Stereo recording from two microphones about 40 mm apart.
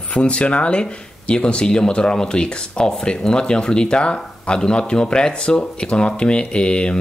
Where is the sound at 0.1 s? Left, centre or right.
Left.